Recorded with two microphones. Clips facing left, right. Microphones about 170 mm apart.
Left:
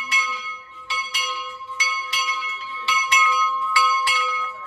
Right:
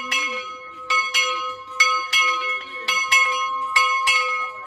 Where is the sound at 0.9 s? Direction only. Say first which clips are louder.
Right 4 dB; 90° right; by 2.6 s 70° right (ahead or behind).